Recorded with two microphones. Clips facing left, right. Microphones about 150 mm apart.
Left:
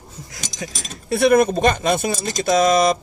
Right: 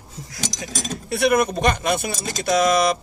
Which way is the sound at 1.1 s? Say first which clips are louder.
Left 4 dB; 25° left (ahead or behind).